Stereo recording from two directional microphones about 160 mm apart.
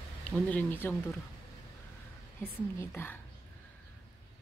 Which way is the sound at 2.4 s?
15° left (ahead or behind).